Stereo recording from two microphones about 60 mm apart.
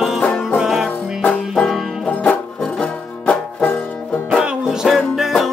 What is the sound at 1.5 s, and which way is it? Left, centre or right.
Banjo, centre.